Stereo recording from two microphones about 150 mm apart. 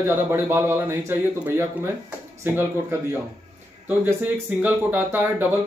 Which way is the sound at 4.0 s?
10° right (ahead or behind).